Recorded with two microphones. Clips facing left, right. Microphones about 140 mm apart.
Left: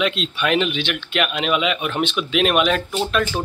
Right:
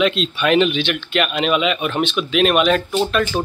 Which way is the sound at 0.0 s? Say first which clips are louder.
Right 4 dB; 5° left (ahead or behind).